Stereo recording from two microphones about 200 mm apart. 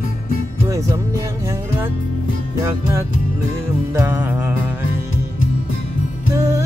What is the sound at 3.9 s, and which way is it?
Speech, 10° right (ahead or behind).